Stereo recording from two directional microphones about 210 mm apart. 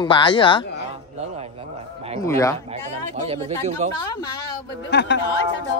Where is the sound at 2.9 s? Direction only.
30° right (ahead or behind).